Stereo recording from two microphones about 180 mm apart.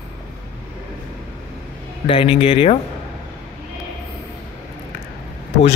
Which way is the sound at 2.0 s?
30° left (ahead or behind).